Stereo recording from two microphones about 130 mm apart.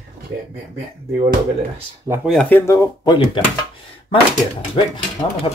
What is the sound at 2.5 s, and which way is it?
Speech, 15° left (ahead or behind).